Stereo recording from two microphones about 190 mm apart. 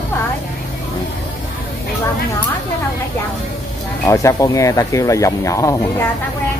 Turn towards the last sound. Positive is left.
turn(degrees=15)  # may be behind; listen again after turning